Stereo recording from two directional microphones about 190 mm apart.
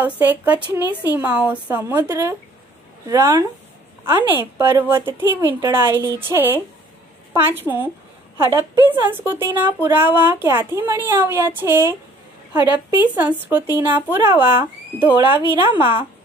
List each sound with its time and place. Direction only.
0.0 s speech: 10° right (ahead or behind)
0.7 s speech: 20° left (ahead or behind)
1.1 s speech: 5° right (ahead or behind)